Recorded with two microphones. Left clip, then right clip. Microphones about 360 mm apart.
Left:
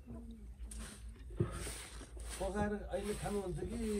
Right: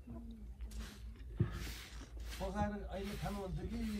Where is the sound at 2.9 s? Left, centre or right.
Centre.